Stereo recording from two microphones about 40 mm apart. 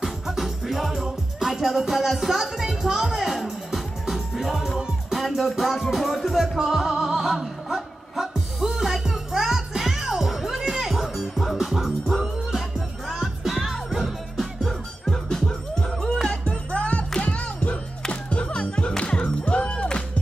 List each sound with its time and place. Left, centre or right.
0.0 s music: centre
16.3 s music: left